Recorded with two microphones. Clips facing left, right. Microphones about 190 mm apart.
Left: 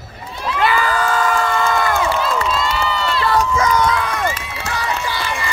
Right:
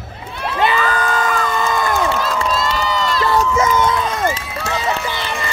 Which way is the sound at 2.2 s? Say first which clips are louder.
Even; 40° right (ahead or behind).